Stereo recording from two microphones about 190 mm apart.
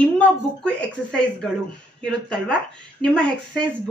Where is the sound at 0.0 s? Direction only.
5° left (ahead or behind).